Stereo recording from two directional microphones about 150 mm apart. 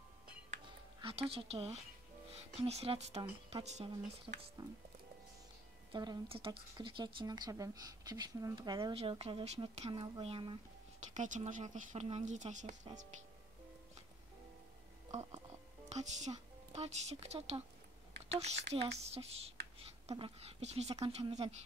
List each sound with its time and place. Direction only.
1.0 s a woman's voice: 40° right (ahead or behind)
4.3 s a woman's voice: 25° right (ahead or behind)
5.9 s a woman's voice: 35° right (ahead or behind)
8.9 s speech: 40° right (ahead or behind)
11.0 s speech: 55° right (ahead or behind)
15.9 s a woman's voice: 50° right (ahead or behind)